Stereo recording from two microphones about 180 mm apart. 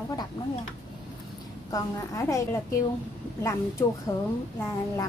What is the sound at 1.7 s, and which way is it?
A woman's voice, 20° left (ahead or behind).